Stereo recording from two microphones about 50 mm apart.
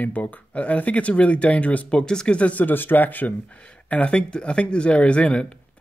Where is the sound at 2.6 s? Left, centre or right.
Left.